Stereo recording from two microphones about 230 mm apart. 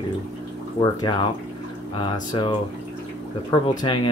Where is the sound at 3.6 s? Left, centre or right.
Left.